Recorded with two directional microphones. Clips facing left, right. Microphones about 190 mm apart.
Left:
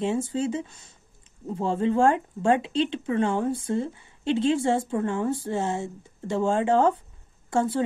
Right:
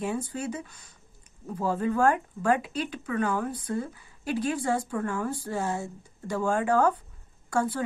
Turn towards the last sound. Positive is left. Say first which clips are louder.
# left 3 dB
turn(degrees=25)  # may be behind; listen again after turning